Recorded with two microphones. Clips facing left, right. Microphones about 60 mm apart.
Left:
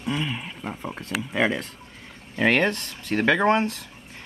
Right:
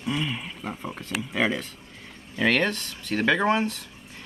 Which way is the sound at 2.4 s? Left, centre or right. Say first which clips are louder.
Left 2 dB; left.